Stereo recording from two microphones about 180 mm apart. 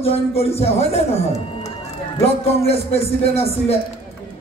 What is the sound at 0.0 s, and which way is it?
A man's voice, 35° left (ahead or behind).